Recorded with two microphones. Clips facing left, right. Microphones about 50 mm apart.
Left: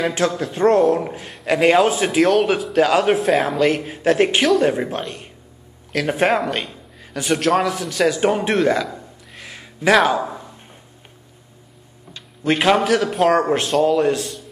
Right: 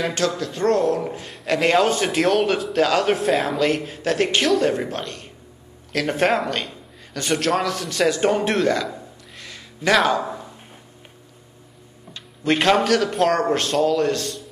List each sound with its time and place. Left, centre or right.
0.0 s a man's voice: centre
1.3 s a man's voice: centre
3.9 s a man's voice: centre
9.4 s a sound: centre
9.9 s speech: centre
12.1 s a man's voice: centre